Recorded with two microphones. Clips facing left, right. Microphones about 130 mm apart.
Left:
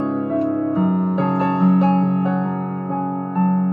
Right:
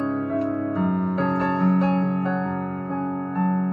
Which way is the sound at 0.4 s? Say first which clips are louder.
Left 5 dB; 15° left (ahead or behind).